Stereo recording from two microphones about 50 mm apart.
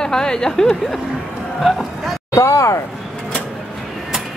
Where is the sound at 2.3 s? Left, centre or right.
Left.